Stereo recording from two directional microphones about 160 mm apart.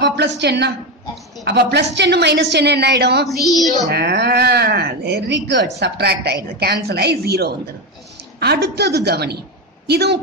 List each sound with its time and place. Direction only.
0.0 s speech: 90° right